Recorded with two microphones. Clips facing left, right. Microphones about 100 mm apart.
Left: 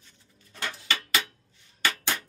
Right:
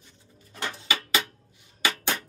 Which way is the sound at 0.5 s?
20° right (ahead or behind).